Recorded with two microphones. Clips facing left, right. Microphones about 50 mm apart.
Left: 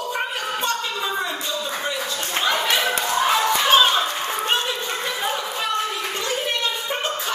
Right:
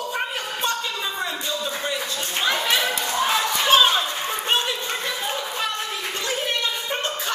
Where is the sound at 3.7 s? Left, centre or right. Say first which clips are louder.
Right 1 dB; centre.